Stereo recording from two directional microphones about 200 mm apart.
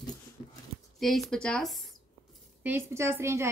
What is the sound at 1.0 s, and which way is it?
Speech, centre (ahead or behind).